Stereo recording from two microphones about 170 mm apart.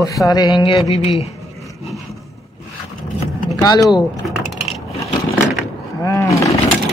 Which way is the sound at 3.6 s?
20° left (ahead or behind).